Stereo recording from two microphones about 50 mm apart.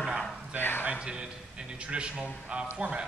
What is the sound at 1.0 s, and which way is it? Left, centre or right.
A man's voice, centre.